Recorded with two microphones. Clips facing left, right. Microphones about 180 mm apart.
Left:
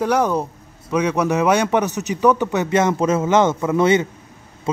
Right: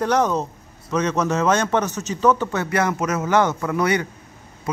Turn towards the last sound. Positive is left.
turn(degrees=25)  # may be behind; listen again after turning